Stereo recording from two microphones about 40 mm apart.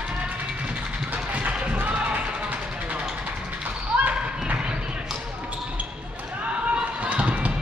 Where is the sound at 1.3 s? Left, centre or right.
Right.